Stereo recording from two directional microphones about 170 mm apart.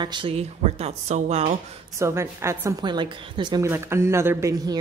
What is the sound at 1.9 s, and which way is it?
A woman's voice, 15° right (ahead or behind).